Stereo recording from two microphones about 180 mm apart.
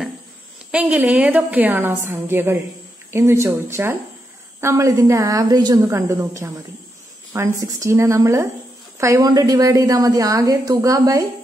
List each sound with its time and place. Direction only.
0.7 s a woman's voice: 5° right (ahead or behind)